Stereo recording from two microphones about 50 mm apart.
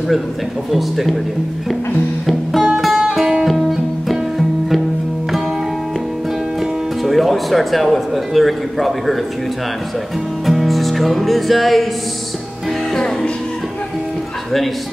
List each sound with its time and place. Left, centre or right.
0.7 s speech: centre
2.2 s music: centre
7.0 s speech: centre
10.4 s music: centre
12.9 s music: centre